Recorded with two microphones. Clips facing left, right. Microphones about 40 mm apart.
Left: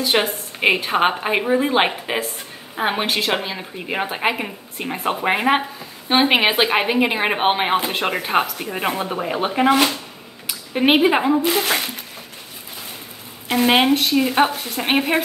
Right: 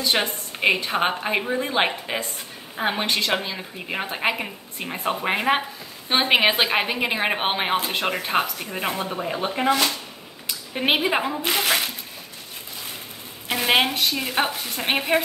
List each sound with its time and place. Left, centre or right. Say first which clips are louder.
0.0 s a woman's voice: left 4 dB; centre
9.1 s speech: left 4 dB; left
10.7 s a woman's voice: left 6 dB; centre
11.4 s a woman's voice: left 3 dB; centre
13.5 s a woman's voice: left 5 dB; centre